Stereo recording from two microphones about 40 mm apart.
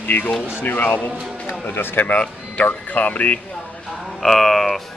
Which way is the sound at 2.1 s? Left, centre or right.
Left.